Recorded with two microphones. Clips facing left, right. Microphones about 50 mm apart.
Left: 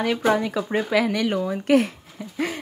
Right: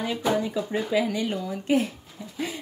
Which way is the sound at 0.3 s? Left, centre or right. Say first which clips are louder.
Left 1 dB; left.